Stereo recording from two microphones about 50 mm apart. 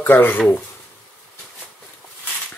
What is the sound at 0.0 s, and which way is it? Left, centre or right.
Speech, left.